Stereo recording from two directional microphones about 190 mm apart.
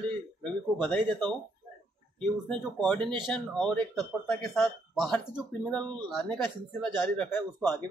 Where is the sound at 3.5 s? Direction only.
5° left (ahead or behind).